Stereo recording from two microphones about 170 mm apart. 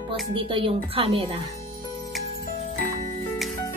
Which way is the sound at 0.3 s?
30° right (ahead or behind).